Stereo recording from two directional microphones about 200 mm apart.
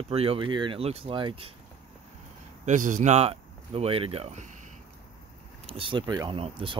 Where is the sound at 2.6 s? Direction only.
40° right (ahead or behind).